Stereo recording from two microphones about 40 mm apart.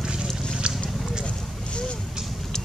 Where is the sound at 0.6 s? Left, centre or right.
Right.